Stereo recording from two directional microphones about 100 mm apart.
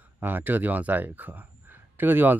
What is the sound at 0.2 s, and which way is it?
Speech, 20° right (ahead or behind).